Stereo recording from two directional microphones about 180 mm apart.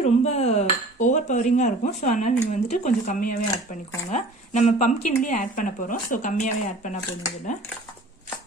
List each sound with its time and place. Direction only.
0.0 s dishes: 35° left (ahead or behind)
4.1 s speech: 40° left (ahead or behind)